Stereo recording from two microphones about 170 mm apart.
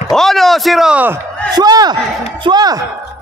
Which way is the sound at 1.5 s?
25° right (ahead or behind).